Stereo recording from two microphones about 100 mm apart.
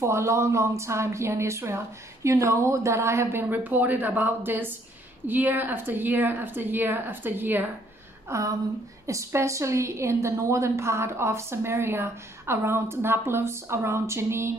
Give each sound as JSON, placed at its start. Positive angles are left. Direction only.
{"t": 0.0, "sound": "a woman's voice", "side_deg": -30}
{"t": 8.3, "sound": "a sound", "side_deg": -35}
{"t": 9.0, "sound": "a woman's voice", "side_deg": -30}